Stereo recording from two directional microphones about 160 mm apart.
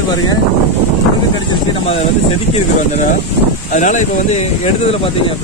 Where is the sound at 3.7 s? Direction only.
50° left (ahead or behind).